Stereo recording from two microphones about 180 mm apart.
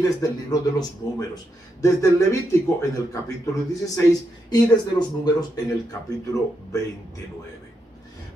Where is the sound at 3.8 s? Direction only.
20° left (ahead or behind).